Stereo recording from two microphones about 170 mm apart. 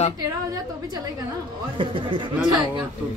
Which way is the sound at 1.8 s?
30° right (ahead or behind).